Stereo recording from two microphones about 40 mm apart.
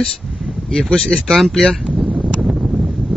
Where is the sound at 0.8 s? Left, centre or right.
Centre.